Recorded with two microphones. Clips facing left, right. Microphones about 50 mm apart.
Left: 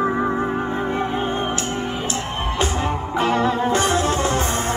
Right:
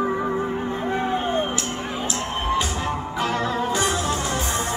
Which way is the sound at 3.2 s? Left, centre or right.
Left.